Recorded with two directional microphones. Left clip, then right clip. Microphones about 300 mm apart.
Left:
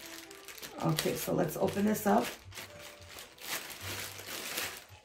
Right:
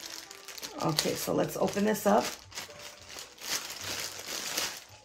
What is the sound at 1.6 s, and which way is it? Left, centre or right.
Speech, right.